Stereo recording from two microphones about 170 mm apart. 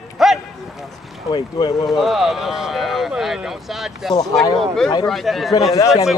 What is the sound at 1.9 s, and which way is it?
Speech, centre (ahead or behind).